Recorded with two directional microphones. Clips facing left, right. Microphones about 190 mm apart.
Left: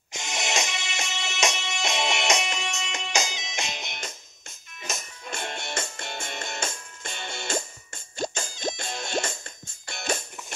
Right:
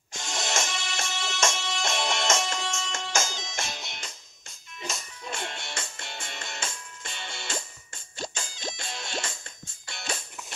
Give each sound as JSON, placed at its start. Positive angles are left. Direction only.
{"t": 0.1, "sound": "music", "side_deg": 20}
{"t": 5.3, "sound": "music", "side_deg": 45}